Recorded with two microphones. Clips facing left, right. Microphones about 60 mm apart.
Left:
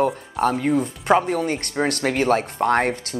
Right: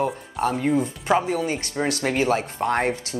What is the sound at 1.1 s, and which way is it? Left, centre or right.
Speech, left.